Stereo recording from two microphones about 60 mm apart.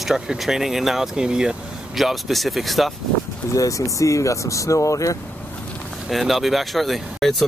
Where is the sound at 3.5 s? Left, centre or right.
Left.